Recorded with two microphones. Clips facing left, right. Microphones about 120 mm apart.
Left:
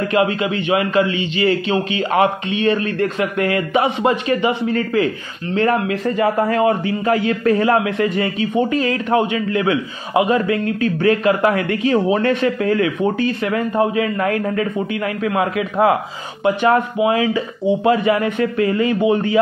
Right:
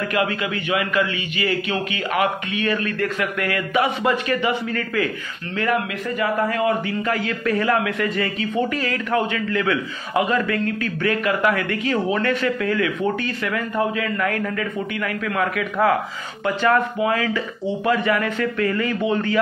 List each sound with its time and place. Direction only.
0.0 s a man's voice: 25° left (ahead or behind)